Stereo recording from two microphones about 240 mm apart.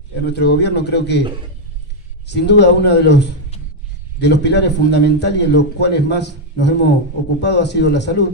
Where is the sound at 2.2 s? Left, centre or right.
Left.